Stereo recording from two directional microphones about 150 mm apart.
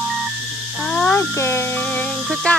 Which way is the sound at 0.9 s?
5° left (ahead or behind).